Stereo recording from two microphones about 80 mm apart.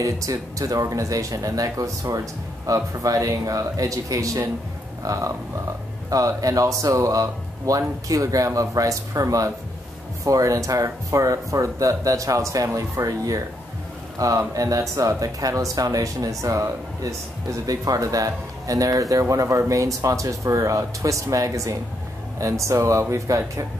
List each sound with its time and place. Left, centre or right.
0.0 s a man's voice: right